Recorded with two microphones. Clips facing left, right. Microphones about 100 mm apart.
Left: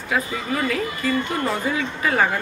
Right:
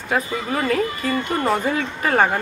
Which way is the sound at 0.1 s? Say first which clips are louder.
Right 2 dB; 40° right (ahead or behind).